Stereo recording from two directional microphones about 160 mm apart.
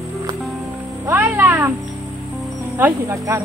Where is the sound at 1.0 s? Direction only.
15° right (ahead or behind).